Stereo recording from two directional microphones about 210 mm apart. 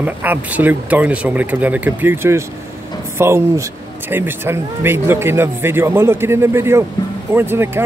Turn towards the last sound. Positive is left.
turn(degrees=-10)  # may be behind; listen again after turning